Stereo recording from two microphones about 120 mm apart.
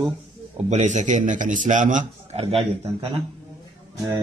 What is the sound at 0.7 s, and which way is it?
A man's voice, 80° right.